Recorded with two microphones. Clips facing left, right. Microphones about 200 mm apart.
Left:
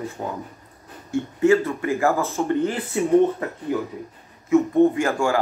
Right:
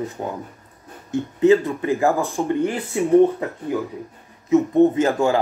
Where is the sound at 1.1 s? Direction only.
20° right (ahead or behind).